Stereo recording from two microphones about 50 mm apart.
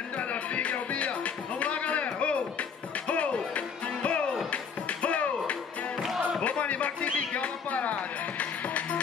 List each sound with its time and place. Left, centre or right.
0.2 s music: left